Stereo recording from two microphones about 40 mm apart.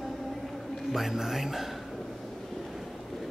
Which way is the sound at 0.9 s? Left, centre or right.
Centre.